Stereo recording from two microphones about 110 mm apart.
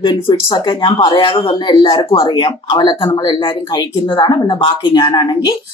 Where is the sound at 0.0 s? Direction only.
40° left (ahead or behind).